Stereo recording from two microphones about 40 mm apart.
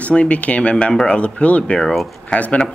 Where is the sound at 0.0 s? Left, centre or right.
Left.